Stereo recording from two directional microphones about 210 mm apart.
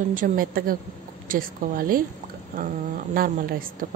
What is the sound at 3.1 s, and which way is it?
Speech, 45° right (ahead or behind).